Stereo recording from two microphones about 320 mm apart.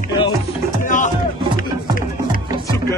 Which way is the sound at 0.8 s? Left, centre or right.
Left.